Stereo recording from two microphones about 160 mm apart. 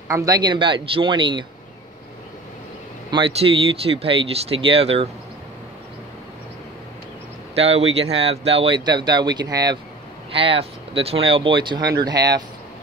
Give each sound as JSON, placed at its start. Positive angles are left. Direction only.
{"t": 0.1, "sound": "a man's voice", "side_deg": -25}
{"t": 3.1, "sound": "speech", "side_deg": -35}
{"t": 7.5, "sound": "speech", "side_deg": -40}
{"t": 10.3, "sound": "a man's voice", "side_deg": -35}